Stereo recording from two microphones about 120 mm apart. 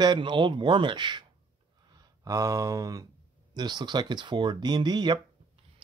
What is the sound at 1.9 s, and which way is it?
A man's voice, 30° right (ahead or behind).